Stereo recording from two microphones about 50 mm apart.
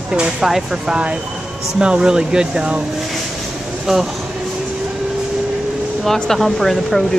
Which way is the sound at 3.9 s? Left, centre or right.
Centre.